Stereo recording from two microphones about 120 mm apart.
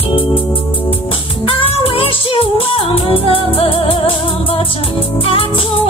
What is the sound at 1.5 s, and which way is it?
Music, 50° left (ahead or behind).